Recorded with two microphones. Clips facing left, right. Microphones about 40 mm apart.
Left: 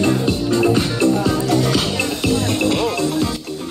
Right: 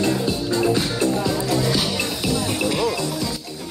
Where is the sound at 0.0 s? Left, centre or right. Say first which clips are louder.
Left 4 dB; left.